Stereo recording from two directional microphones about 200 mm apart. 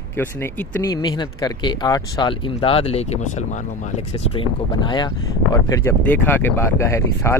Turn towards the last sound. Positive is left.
turn(degrees=15)  # may be behind; listen again after turning